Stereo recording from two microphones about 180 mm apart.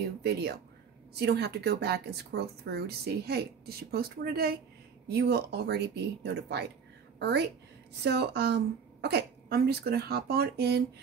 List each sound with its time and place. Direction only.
0.2 s a woman's voice: 65° right (ahead or behind)